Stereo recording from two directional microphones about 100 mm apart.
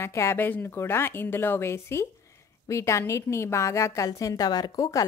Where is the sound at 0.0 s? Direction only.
30° left (ahead or behind).